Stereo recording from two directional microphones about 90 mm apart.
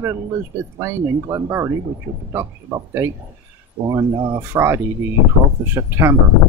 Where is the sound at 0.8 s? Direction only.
30° right (ahead or behind).